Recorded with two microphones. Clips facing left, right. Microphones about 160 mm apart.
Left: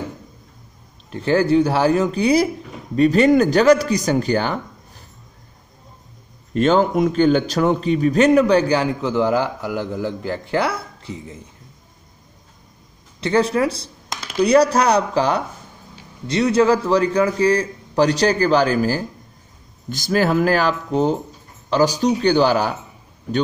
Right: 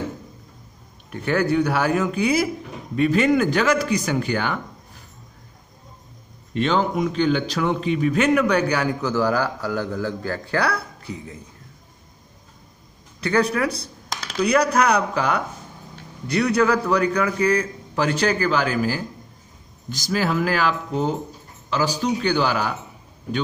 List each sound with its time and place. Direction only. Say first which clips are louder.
1.1 s a man's voice: left 4 dB; 30° left (ahead or behind)
6.5 s a man's voice: left 5 dB; 45° left (ahead or behind); by 11.3 s 25° left (ahead or behind)
13.2 s a man's voice: left 3 dB; 25° left (ahead or behind)
19.9 s a man's voice: left 5 dB; 50° left (ahead or behind)